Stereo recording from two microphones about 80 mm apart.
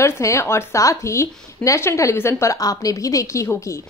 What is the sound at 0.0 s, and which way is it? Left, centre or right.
A woman's voice, left.